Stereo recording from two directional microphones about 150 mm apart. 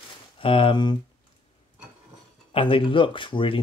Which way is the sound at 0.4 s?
35° left (ahead or behind).